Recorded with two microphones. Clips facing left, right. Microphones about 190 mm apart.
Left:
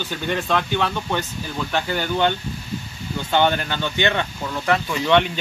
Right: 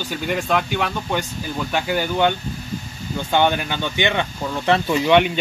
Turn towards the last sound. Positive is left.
turn(degrees=-10)  # may be behind; listen again after turning